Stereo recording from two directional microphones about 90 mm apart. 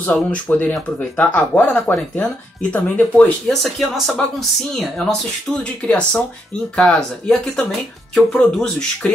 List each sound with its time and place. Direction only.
0.0 s speech: 15° left (ahead or behind)
3.6 s speech: centre (ahead or behind)